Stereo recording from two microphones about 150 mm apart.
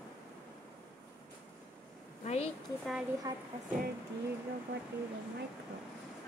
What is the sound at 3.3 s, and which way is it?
Speech, 25° right (ahead or behind).